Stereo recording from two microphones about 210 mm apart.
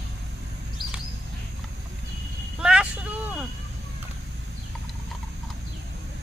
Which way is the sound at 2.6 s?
5° right (ahead or behind).